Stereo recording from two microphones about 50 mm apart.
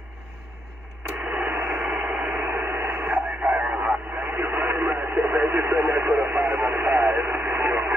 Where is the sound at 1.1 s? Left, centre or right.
Right.